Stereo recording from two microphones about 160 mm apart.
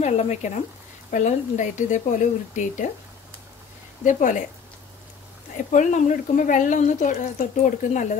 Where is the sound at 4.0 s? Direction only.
55° left (ahead or behind).